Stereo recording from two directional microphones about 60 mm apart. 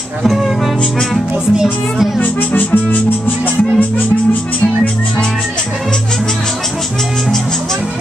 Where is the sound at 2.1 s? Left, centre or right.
Left.